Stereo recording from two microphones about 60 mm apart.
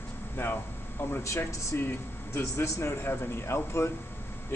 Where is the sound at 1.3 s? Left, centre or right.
Left.